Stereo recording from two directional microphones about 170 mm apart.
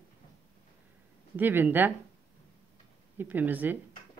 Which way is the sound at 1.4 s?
10° right (ahead or behind).